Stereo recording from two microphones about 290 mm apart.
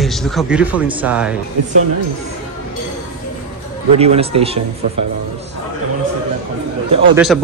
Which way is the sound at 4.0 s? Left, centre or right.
Right.